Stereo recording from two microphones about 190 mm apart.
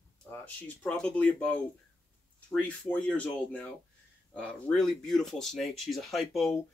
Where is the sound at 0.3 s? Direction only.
10° left (ahead or behind).